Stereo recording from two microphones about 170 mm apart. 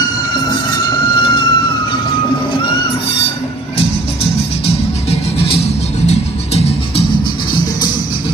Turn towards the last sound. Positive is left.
turn(degrees=35)  # may be behind; listen again after turning